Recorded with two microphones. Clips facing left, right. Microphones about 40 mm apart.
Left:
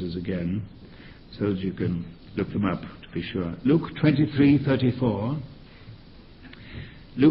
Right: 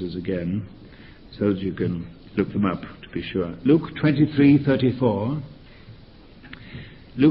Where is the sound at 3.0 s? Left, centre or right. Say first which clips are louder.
Right 2 dB; centre.